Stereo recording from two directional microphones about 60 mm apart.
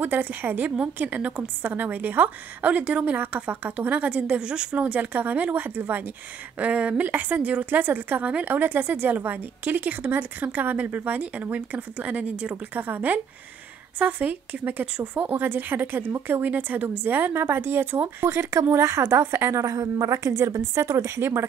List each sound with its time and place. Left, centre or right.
0.0 s a woman's voice: right
6.6 s a woman's voice: right